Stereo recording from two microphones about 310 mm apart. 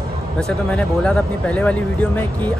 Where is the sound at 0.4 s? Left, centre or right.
Centre.